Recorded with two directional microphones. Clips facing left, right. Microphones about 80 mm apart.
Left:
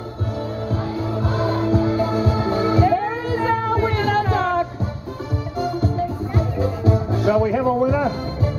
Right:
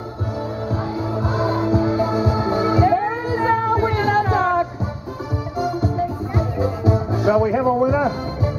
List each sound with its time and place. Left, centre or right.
1.1 s music: centre